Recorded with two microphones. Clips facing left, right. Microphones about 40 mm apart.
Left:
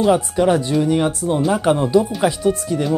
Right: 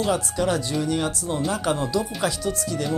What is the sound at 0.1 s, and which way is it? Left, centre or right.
Speech, left.